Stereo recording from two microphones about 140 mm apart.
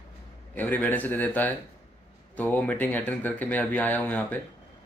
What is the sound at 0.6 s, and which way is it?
Speech, 10° left (ahead or behind).